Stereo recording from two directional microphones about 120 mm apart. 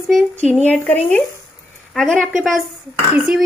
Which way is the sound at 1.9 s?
Centre (ahead or behind).